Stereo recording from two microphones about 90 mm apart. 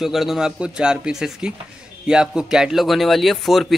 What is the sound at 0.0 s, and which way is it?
Speech, centre (ahead or behind).